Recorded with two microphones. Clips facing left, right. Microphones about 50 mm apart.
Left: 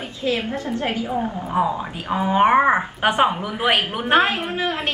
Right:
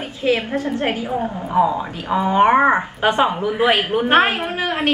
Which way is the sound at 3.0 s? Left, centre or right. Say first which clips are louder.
Right 1 dB; left.